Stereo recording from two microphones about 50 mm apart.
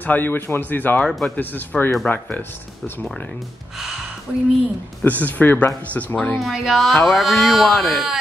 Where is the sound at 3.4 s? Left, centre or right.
Centre.